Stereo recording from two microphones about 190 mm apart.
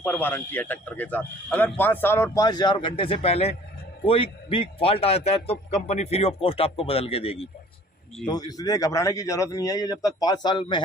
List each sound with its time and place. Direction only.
0.0 s a man's voice: 10° left (ahead or behind); by 7.4 s 30° left (ahead or behind)
8.3 s a man's voice: 20° left (ahead or behind)